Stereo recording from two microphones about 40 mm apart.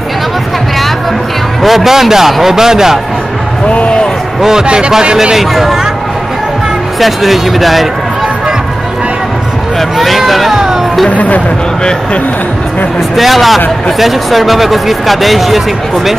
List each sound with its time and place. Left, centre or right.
1.6 s speech: centre
3.6 s speech: left
4.4 s speech: centre
4.6 s speech: right
5.3 s speech: centre
7.0 s speech: centre
9.8 s speech: centre
11.1 s speech: left
13.1 s speech: centre